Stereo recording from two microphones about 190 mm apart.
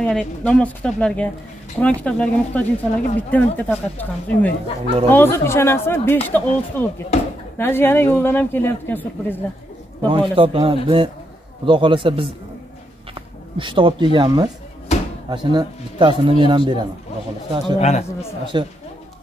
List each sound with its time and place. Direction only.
0.0 s speech: 5° left (ahead or behind)
10.0 s a man's voice: 25° right (ahead or behind)
13.6 s a man's voice: 25° right (ahead or behind)
17.7 s a man's voice: 35° left (ahead or behind)
18.4 s a man's voice: 25° right (ahead or behind)